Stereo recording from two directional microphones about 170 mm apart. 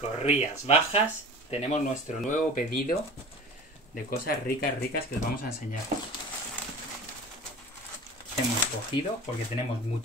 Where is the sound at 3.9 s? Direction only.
65° left (ahead or behind).